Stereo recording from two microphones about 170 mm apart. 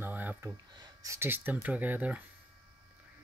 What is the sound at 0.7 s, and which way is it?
Speech, 20° right (ahead or behind).